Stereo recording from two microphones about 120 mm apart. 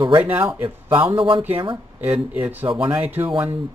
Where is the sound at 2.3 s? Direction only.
15° right (ahead or behind).